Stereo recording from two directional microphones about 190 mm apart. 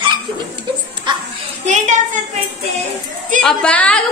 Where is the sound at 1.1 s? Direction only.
25° right (ahead or behind).